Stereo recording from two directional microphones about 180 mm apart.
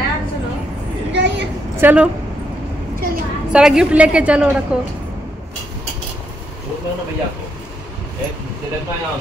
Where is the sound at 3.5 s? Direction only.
5° right (ahead or behind).